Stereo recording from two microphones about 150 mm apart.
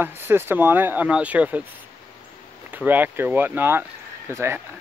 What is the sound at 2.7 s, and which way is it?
Speech, 10° right (ahead or behind).